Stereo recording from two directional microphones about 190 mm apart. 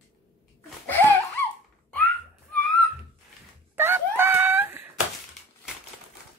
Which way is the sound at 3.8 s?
10° right (ahead or behind).